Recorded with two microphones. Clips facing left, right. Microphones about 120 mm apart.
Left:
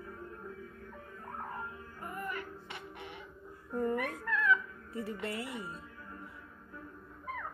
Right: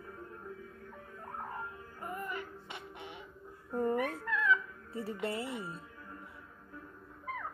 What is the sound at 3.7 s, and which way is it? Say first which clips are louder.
Dog: right 1 dB; 25° right (ahead or behind).